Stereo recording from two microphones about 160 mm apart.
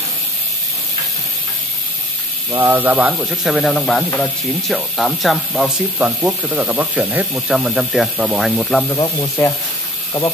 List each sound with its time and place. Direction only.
2.5 s speech: 15° right (ahead or behind); by 8.8 s 5° left (ahead or behind)
8.8 s speech: 25° left (ahead or behind)